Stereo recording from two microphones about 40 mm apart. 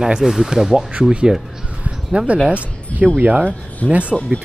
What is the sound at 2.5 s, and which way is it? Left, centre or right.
Speech, right.